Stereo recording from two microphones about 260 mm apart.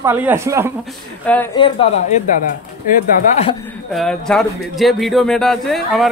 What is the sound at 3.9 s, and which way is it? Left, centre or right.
A man's voice, centre.